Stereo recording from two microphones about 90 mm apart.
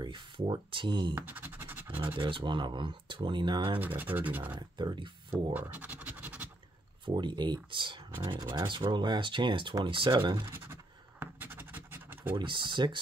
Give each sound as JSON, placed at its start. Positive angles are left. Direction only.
{"t": 0.0, "sound": "speech", "side_deg": -60}
{"t": 1.1, "sound": "speech", "side_deg": -20}
{"t": 2.1, "sound": "speech", "side_deg": -70}
{"t": 3.8, "sound": "speech", "side_deg": -20}
{"t": 4.6, "sound": "speech", "side_deg": -55}
{"t": 5.3, "sound": "scratch", "side_deg": -20}
{"t": 7.2, "sound": "speech", "side_deg": -60}
{"t": 10.5, "sound": "scratch", "side_deg": -25}
{"t": 12.4, "sound": "speech", "side_deg": -65}